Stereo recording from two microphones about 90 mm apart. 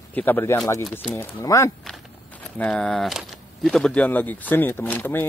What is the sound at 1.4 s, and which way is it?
Speech, 35° left (ahead or behind).